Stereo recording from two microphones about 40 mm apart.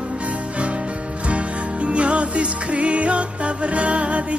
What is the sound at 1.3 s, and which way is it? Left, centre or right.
Music, right.